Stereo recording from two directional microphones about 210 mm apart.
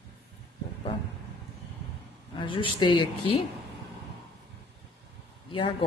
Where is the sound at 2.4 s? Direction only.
25° left (ahead or behind).